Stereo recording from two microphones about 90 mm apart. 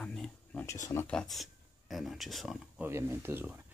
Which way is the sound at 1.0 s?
5° left (ahead or behind).